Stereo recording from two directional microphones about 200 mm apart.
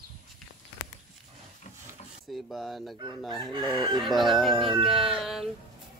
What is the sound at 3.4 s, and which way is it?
Chicken, 20° right (ahead or behind).